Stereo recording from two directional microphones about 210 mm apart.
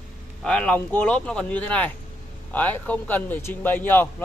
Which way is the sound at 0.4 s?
5° left (ahead or behind).